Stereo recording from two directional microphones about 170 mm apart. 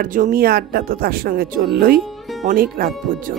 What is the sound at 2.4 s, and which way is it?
Speech, 60° right (ahead or behind).